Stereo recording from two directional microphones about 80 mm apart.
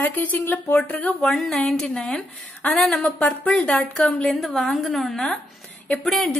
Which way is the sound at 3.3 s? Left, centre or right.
Centre.